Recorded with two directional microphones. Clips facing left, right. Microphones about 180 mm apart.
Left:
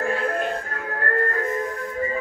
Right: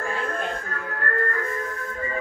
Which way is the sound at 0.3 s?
35° left (ahead or behind).